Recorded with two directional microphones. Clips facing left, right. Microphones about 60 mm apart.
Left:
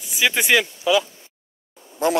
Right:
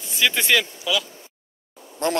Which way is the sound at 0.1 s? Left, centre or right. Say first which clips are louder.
Left 2 dB; centre.